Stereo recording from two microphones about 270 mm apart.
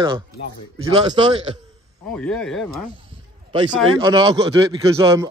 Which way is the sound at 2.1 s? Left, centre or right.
Centre.